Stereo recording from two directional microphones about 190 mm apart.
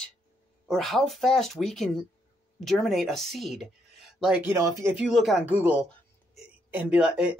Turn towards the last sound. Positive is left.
turn(degrees=-5)  # may be behind; listen again after turning